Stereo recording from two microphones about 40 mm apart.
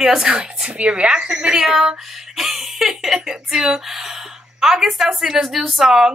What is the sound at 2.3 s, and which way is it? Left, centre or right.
Speech, centre.